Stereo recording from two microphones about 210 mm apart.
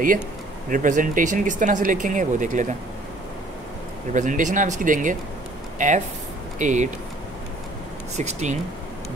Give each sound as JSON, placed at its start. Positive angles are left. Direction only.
{"t": 0.7, "sound": "speech", "side_deg": -40}
{"t": 4.1, "sound": "speech", "side_deg": -35}
{"t": 8.2, "sound": "speech", "side_deg": -35}